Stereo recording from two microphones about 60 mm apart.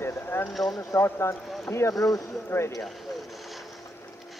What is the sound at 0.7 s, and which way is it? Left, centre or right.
Speech, left.